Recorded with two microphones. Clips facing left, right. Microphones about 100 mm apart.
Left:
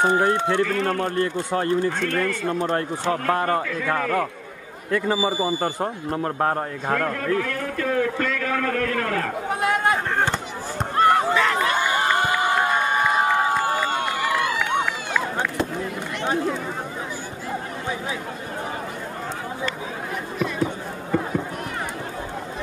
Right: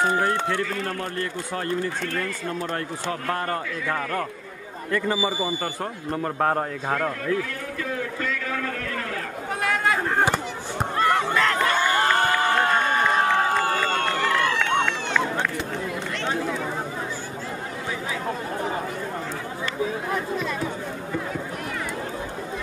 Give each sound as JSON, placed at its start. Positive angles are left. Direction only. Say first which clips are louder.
{"t": 0.0, "sound": "a man's voice", "louder": "left 3 dB", "side_deg": 20}
{"t": 0.7, "sound": "a man's voice", "louder": "left 6 dB", "side_deg": 55}
{"t": 1.0, "sound": "a man's voice", "louder": "left 6 dB", "side_deg": 30}
{"t": 1.9, "sound": "a man's voice", "louder": "left 5 dB", "side_deg": 60}
{"t": 3.8, "sound": "a man's voice", "louder": "left 4 dB", "side_deg": 55}
{"t": 4.9, "sound": "a man's voice", "louder": "left 2 dB", "side_deg": 5}
{"t": 6.9, "sound": "a sound", "louder": "left 3 dB", "side_deg": 50}
{"t": 9.5, "sound": "chatter", "louder": "left 2 dB", "side_deg": 25}
{"t": 10.1, "sound": "a sound", "louder": "right 1 dB", "side_deg": -10}
{"t": 11.0, "sound": "a sound", "louder": "left 4 dB", "side_deg": 35}
{"t": 11.3, "sound": "crowd", "louder": "left 1 dB", "side_deg": 5}